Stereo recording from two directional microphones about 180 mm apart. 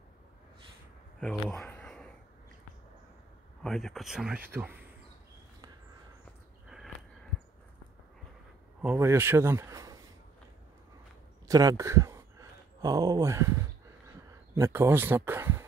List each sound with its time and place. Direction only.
1.2 s a sound: 5° left (ahead or behind)
3.6 s speech: centre (ahead or behind)
8.8 s speech: 15° right (ahead or behind)
11.4 s speech: 20° right (ahead or behind)